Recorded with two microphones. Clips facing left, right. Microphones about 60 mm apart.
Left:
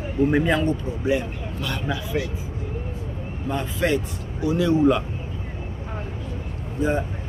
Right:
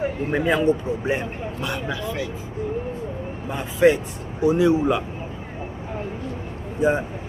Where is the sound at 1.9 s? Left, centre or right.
Centre.